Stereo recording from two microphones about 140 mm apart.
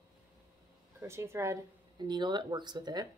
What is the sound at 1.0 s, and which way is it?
Speech, 20° right (ahead or behind).